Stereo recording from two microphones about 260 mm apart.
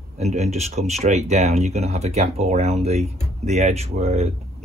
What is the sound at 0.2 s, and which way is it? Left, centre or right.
Speech, right.